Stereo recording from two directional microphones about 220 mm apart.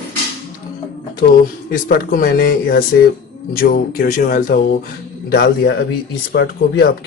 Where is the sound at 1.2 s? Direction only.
45° left (ahead or behind).